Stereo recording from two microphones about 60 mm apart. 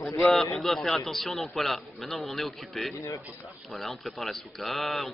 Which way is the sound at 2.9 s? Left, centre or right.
Left.